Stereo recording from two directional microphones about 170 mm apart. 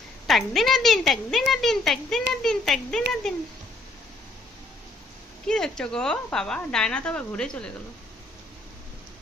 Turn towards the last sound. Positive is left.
turn(degrees=5)  # may be behind; listen again after turning